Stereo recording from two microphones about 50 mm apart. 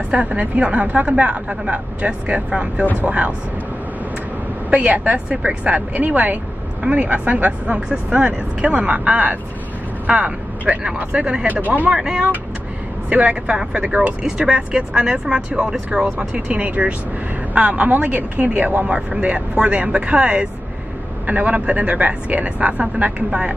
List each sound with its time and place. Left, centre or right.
0.1 s speech: right
4.6 s speech: right
11.4 s speech: right
11.9 s speech: centre